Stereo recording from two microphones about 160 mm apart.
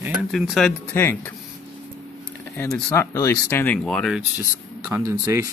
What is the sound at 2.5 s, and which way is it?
Speech, 15° left (ahead or behind).